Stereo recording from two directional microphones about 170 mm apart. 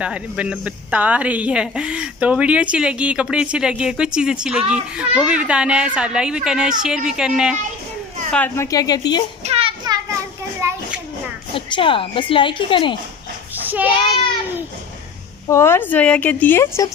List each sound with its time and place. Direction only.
0.0 s speech: 5° right (ahead or behind)
8.3 s speech: 10° left (ahead or behind)
8.6 s speech: 20° left (ahead or behind)
9.4 s children playing: 35° right (ahead or behind)
10.6 s children playing: 15° right (ahead or behind)
11.5 s speech: 30° left (ahead or behind)
15.4 s speech: 15° left (ahead or behind)